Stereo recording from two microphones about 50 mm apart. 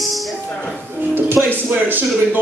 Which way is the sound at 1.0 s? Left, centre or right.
Right.